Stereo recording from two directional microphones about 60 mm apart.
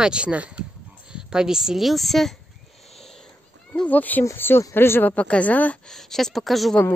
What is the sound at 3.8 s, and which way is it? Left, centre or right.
Speech, left.